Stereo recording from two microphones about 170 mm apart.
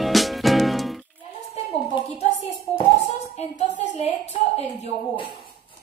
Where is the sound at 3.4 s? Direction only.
40° left (ahead or behind).